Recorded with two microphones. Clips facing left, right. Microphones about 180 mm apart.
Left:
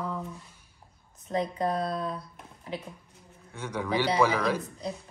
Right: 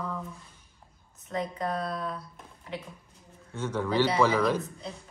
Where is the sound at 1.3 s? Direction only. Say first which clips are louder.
Left 3 dB; 35° left (ahead or behind).